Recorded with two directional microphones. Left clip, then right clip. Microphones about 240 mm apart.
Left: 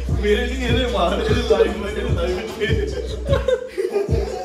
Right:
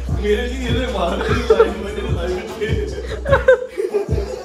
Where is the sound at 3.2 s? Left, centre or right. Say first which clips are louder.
Right 8 dB; right.